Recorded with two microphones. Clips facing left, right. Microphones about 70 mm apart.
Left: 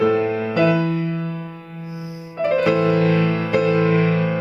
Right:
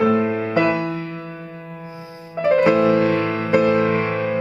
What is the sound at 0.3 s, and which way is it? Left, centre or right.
Music, right.